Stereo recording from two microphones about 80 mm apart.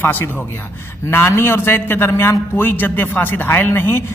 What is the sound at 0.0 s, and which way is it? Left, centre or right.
A man's voice, left.